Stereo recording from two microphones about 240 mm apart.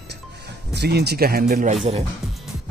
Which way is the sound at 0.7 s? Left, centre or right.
Right.